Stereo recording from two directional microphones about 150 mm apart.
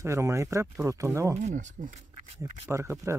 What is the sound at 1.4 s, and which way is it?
Speech, 55° right (ahead or behind).